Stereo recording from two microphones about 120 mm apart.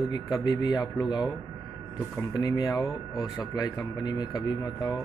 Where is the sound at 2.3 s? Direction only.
35° left (ahead or behind).